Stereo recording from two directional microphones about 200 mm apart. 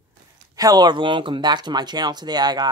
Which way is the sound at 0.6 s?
20° right (ahead or behind).